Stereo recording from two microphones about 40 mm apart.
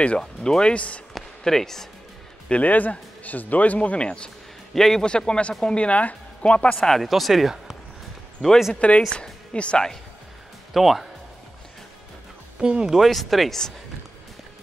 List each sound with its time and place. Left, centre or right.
0.2 s speech: centre; by 1.0 s left
1.4 s speech: centre
2.6 s a man's voice: left
4.0 s speech: left
4.7 s speech: centre
5.0 s speech: left
5.9 s speech: left
6.9 s speech: centre
8.4 s speech: centre
8.7 s a man's voice: left
10.7 s speech: centre
12.5 s speech: centre
13.0 s speech: centre